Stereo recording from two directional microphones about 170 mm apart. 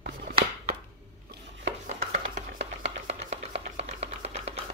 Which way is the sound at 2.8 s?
40° right (ahead or behind).